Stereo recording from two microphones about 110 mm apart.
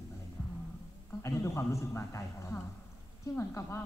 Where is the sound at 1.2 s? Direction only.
25° left (ahead or behind).